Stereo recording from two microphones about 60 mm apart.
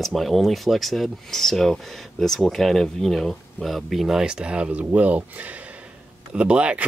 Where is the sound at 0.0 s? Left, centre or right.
Centre.